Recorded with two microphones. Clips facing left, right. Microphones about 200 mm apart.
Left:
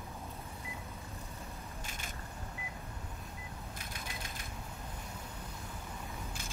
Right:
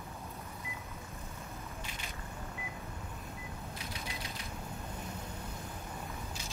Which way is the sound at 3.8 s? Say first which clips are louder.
Right 2 dB; 50° left (ahead or behind).